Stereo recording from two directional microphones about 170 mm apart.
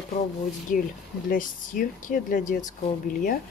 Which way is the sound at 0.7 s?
50° left (ahead or behind).